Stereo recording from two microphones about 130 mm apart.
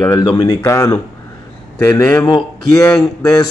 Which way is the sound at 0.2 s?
40° left (ahead or behind).